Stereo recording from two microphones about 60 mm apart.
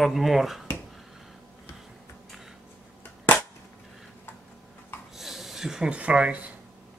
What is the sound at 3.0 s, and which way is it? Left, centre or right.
Cap gun, left.